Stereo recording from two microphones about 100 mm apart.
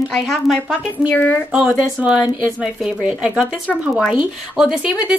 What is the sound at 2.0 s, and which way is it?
Speech, 10° right (ahead or behind).